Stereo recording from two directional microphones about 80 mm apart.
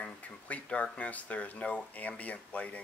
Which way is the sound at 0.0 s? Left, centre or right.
Centre.